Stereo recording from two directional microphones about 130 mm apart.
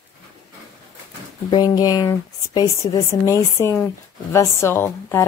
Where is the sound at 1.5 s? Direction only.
30° left (ahead or behind).